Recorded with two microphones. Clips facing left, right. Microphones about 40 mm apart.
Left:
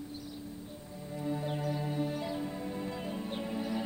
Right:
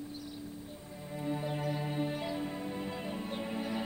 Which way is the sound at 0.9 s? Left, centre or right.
Centre.